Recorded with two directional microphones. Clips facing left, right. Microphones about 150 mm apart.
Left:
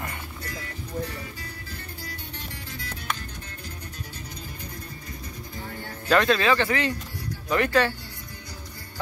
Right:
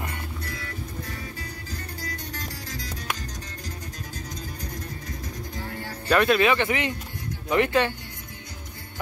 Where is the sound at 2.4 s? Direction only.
40° right (ahead or behind).